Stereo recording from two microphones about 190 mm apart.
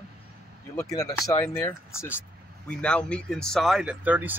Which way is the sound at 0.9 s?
15° left (ahead or behind).